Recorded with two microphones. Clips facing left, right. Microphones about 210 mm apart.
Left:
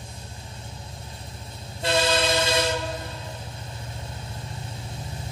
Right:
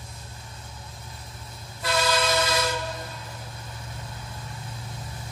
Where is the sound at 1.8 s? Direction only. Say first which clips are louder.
Left 2 dB; 25° left (ahead or behind).